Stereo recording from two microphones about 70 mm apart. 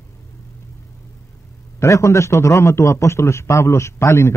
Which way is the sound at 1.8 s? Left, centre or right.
Left.